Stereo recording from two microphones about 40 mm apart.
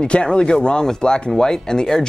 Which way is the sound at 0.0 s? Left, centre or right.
Left.